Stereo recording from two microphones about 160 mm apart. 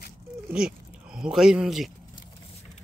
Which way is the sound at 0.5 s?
5° right (ahead or behind).